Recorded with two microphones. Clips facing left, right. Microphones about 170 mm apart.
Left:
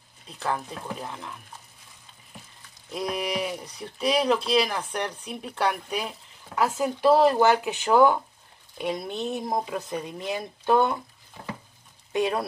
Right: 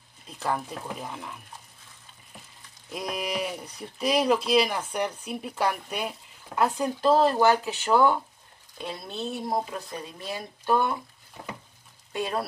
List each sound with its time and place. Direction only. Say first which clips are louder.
0.4 s speech: even; 5° right (ahead or behind)
2.9 s speech: left 2 dB; centre (ahead or behind); by 11.0 s 20° left (ahead or behind)
12.1 s speech: left 4 dB; 20° left (ahead or behind)